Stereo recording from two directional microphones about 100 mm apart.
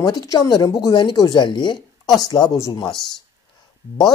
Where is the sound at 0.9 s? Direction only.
50° left (ahead or behind).